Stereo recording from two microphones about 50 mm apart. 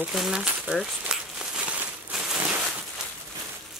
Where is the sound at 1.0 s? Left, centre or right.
Centre.